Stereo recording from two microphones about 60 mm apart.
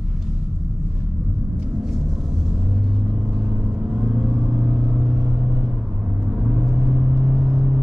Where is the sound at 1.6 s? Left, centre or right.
Centre.